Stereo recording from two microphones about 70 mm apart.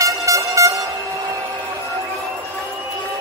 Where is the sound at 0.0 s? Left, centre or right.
Right.